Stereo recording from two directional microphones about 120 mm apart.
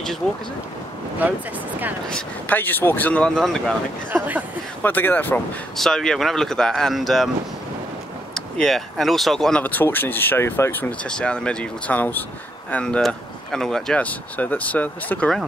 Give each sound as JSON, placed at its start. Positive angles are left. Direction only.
{"t": 2.0, "sound": "speech", "side_deg": 10}
{"t": 3.3, "sound": "speech", "side_deg": 0}
{"t": 4.1, "sound": "speech", "side_deg": -15}
{"t": 4.8, "sound": "speech", "side_deg": 15}
{"t": 5.8, "sound": "speech", "side_deg": 5}
{"t": 8.4, "sound": "speech", "side_deg": 5}
{"t": 9.6, "sound": "speech", "side_deg": 15}